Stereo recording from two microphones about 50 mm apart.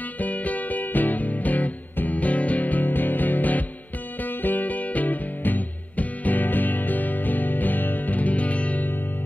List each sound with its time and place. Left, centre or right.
0.2 s music: left